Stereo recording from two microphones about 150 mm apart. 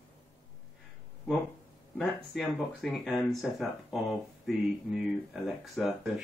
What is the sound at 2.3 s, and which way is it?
Speech, centre (ahead or behind).